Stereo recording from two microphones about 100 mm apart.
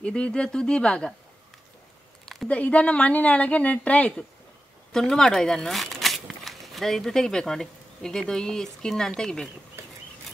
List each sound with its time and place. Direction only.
0.0 s speech: 10° left (ahead or behind)
2.2 s speech: 5° left (ahead or behind)
9.8 s bird flight: 25° right (ahead or behind)